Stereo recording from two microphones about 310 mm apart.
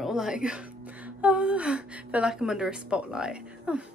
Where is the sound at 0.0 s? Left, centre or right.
Centre.